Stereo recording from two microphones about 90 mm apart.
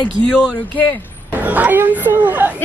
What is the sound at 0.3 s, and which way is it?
Speech, 15° left (ahead or behind).